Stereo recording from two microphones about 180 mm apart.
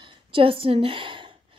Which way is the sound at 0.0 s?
30° right (ahead or behind).